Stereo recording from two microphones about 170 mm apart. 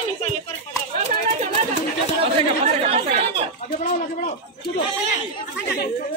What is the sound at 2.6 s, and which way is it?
Chatter, 40° right (ahead or behind).